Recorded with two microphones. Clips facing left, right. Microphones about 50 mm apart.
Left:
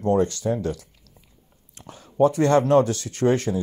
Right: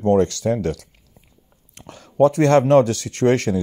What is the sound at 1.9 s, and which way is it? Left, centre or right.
Speech, right.